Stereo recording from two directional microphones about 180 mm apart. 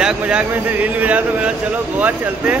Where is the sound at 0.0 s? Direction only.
5° right (ahead or behind).